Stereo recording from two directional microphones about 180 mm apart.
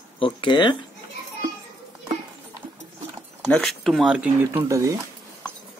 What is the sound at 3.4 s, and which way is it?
Speech, 5° left (ahead or behind).